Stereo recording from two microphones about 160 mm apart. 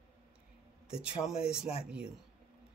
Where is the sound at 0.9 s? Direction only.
5° right (ahead or behind).